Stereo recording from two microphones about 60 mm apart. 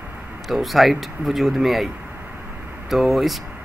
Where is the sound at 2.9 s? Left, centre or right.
Centre.